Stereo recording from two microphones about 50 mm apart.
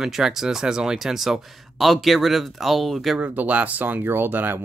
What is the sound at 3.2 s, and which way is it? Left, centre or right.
Speech, right.